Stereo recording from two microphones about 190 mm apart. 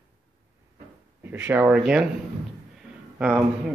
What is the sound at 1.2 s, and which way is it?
Speech, 10° right (ahead or behind).